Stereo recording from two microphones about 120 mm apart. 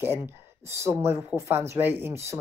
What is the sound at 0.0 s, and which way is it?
Speech, 20° right (ahead or behind).